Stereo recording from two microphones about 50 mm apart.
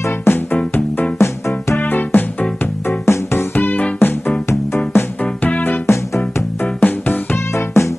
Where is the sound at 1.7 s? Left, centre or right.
Left.